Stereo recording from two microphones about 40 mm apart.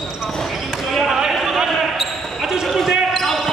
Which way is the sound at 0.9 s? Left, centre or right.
Centre.